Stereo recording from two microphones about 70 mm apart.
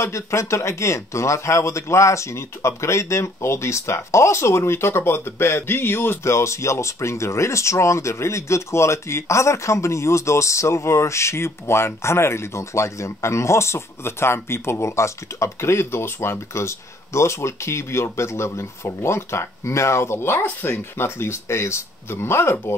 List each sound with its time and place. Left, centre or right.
0.0 s speech: left